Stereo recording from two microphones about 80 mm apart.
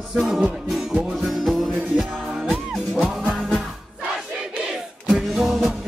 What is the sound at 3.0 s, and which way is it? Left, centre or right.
Music, centre.